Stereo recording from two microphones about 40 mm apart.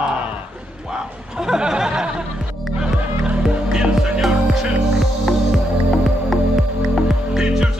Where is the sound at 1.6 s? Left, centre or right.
Right.